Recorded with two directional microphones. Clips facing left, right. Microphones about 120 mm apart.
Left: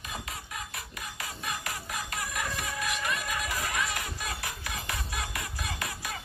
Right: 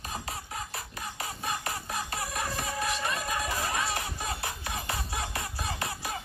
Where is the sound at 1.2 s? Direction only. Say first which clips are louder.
Right 3 dB; 30° right (ahead or behind).